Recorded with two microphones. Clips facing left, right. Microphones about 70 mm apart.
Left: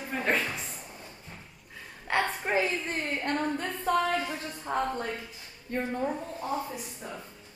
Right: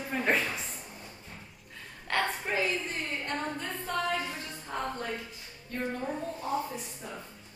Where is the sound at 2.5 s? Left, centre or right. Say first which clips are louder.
Left 4 dB; left.